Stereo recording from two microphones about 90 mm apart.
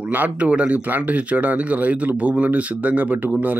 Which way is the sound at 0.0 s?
15° right (ahead or behind).